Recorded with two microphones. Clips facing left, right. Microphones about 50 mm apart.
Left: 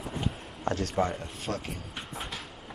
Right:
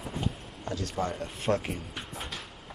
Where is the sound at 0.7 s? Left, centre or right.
Left.